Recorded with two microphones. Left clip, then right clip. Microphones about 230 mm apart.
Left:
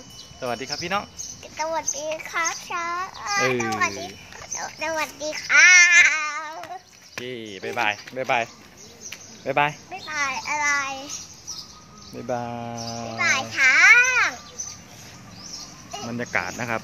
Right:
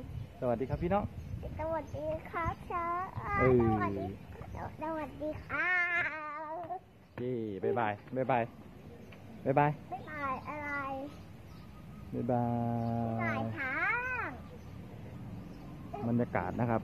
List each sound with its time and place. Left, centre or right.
0.4 s a child's voice: centre
7.2 s a child's voice: centre
9.5 s a child's voice: centre
12.3 s a child's voice: centre
13.2 s a child's voice: left
16.1 s speech: centre